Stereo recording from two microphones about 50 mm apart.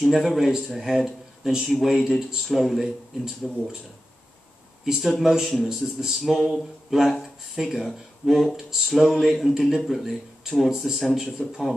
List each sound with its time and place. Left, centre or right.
0.0 s speech: centre
3.4 s speech: centre
4.8 s a man's voice: centre